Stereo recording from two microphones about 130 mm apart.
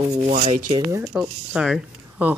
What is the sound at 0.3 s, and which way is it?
Speech, 80° right.